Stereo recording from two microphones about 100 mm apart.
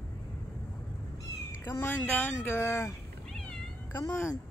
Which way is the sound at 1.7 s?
20° left (ahead or behind).